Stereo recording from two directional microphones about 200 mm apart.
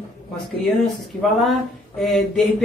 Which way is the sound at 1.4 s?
Centre (ahead or behind).